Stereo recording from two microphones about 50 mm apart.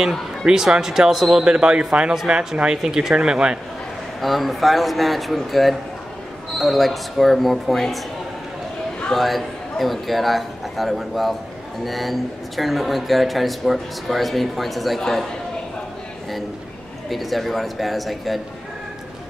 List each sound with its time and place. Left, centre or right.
0.5 s speech: centre
1.4 s speech: centre
4.2 s speech: centre
9.1 s speech: centre
17.1 s speech: centre